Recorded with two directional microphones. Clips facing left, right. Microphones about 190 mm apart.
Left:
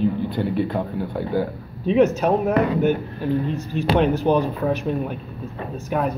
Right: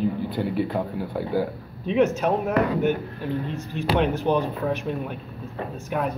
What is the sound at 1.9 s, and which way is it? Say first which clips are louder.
Speech: left 4 dB; 40° left (ahead or behind).